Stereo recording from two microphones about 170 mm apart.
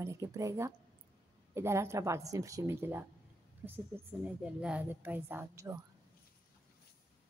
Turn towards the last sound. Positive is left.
turn(degrees=-15)  # may be behind; listen again after turning